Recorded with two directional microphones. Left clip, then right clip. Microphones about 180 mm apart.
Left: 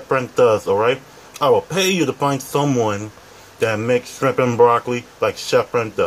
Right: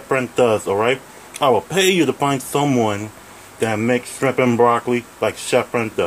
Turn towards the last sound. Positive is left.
turn(degrees=-10)  # may be behind; listen again after turning